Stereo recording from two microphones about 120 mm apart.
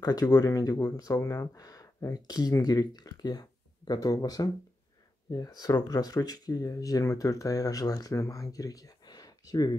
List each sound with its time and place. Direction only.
0.0 s speech: 30° left (ahead or behind)